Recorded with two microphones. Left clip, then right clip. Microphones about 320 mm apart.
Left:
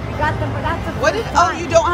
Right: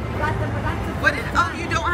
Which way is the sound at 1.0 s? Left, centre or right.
Centre.